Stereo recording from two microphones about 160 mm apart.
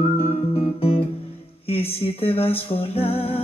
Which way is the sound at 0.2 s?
35° left (ahead or behind).